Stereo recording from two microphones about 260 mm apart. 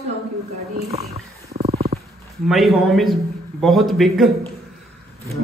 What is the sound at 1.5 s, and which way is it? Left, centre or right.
Wild animals, right.